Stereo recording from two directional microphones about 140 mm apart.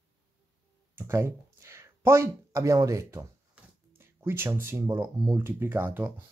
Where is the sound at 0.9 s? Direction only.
20° right (ahead or behind).